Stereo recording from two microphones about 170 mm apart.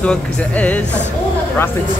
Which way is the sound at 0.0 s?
5° left (ahead or behind).